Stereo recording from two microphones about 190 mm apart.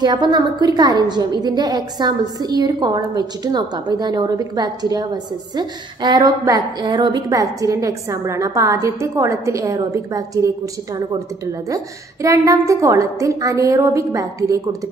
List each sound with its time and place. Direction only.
0.0 s a woman's voice: 20° right (ahead or behind)